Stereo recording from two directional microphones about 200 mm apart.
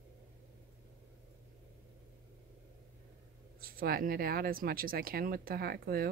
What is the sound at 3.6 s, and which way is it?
Speech, 45° right (ahead or behind).